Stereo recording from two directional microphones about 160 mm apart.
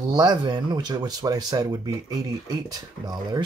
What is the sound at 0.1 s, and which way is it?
Speech, 25° right (ahead or behind).